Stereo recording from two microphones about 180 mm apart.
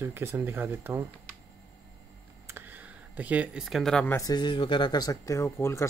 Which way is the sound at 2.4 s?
10° right (ahead or behind).